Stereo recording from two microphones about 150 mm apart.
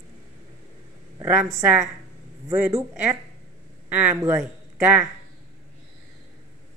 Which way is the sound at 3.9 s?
10° right (ahead or behind).